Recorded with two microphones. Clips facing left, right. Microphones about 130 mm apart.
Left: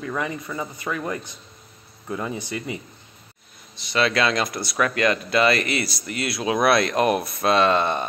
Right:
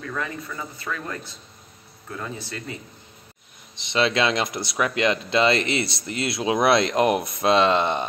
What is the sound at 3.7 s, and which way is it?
Speech, 20° right (ahead or behind).